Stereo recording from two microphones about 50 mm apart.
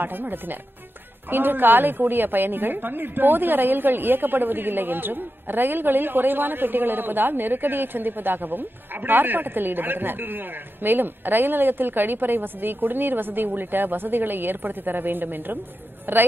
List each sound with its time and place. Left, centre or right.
0.0 s a woman's voice: right